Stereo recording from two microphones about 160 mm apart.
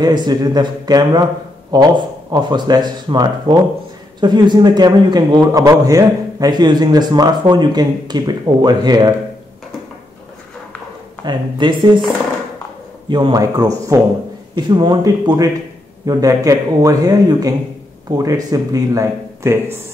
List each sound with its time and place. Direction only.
0.0 s a man's voice: 25° right (ahead or behind)
11.2 s a man's voice: 30° right (ahead or behind)
13.1 s a man's voice: 25° right (ahead or behind)